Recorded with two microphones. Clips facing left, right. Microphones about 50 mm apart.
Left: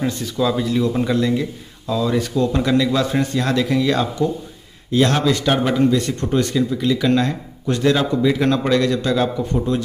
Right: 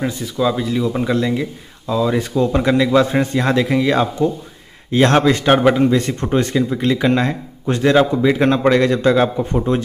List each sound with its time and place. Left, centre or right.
0.0 s speech: centre
4.9 s a man's voice: right